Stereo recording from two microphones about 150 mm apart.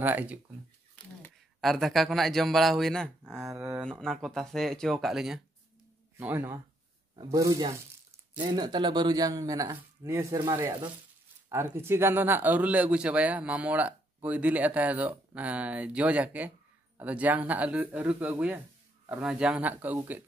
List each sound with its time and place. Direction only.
0.0 s speech: 10° right (ahead or behind)
0.9 s speech: 5° left (ahead or behind)
3.5 s a sound: 20° right (ahead or behind)
4.0 s speech: 5° left (ahead or behind)
6.1 s speech: 15° right (ahead or behind)